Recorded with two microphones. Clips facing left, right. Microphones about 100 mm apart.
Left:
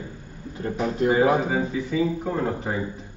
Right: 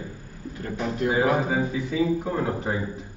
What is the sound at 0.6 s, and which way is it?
Speech, 25° left (ahead or behind).